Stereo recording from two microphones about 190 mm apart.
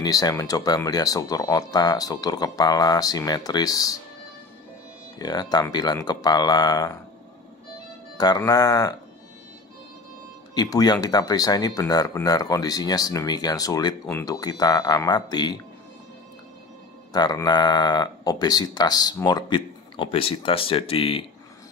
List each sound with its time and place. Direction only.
0.0 s speech: 20° left (ahead or behind)
5.2 s speech: 20° left (ahead or behind)
8.2 s speech: 20° left (ahead or behind)
10.5 s speech: 20° left (ahead or behind)
17.1 s speech: 20° left (ahead or behind)